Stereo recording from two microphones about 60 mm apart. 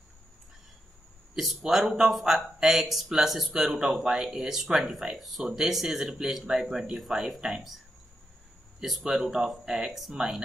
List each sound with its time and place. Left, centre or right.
1.3 s speech: centre
8.7 s speech: centre